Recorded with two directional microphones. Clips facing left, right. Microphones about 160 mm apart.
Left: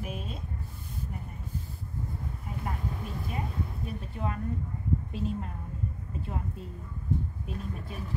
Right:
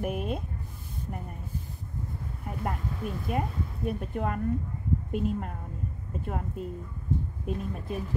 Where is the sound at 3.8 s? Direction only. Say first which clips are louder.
Right 9 dB; 55° right (ahead or behind).